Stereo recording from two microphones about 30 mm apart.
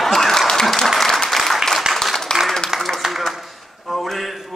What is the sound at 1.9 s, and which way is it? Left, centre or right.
Applause, right.